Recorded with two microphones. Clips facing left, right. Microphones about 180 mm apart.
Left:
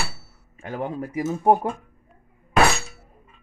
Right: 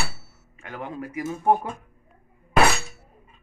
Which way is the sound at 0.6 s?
35° left (ahead or behind).